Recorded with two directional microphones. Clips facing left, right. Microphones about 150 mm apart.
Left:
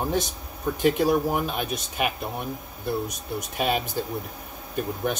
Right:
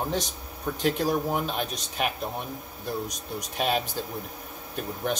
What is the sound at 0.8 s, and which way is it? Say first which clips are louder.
Speech: left 4 dB; 5° left (ahead or behind).